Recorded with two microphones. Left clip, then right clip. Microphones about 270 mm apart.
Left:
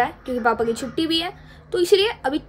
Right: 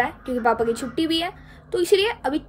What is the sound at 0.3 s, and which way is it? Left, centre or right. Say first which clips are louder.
A woman's voice: right 2 dB; centre.